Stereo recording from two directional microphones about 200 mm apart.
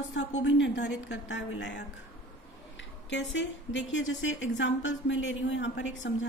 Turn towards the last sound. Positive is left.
turn(degrees=65)  # may be behind; listen again after turning